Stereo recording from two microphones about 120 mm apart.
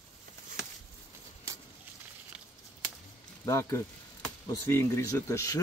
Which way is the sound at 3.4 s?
25° left (ahead or behind).